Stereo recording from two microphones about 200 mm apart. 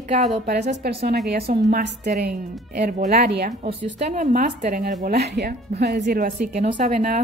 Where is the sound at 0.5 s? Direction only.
50° right (ahead or behind).